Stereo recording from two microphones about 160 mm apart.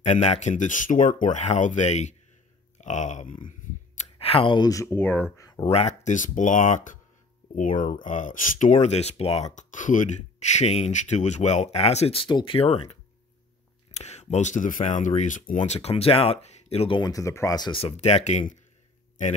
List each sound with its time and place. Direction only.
0.0 s speech: 45° left (ahead or behind); by 5.7 s 20° left (ahead or behind)
5.7 s speech: 45° left (ahead or behind)
8.0 s speech: 50° left (ahead or behind)
13.9 s speech: 45° left (ahead or behind)